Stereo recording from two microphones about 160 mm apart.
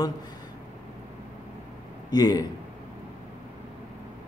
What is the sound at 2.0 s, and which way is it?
Speech, 25° left (ahead or behind).